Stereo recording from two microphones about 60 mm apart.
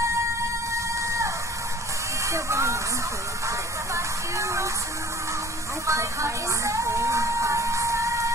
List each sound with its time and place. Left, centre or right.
0.7 s music: right
3.4 s a sound: right
5.9 s music: right